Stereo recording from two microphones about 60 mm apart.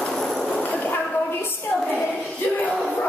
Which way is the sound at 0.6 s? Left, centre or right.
Left.